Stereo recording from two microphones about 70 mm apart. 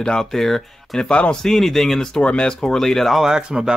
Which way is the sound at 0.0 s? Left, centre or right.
Centre.